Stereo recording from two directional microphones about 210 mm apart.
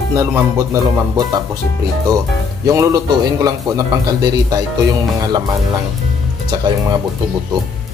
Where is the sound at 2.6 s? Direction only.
15° right (ahead or behind).